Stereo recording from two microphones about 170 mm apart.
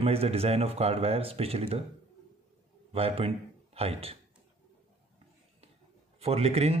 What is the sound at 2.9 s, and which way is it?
Speech, 35° right (ahead or behind).